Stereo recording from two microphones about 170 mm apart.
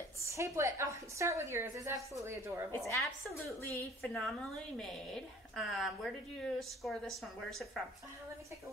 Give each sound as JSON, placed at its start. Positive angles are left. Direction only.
{"t": 0.2, "sound": "a woman's voice", "side_deg": -15}
{"t": 3.0, "sound": "a woman's voice", "side_deg": 0}